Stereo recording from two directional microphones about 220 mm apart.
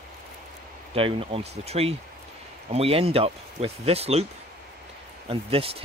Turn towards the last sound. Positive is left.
turn(degrees=-25)  # may be behind; listen again after turning